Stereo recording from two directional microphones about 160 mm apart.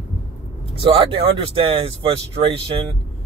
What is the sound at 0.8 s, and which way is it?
Speech, 35° right (ahead or behind).